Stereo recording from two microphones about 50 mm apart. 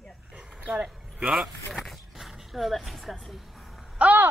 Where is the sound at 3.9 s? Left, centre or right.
Right.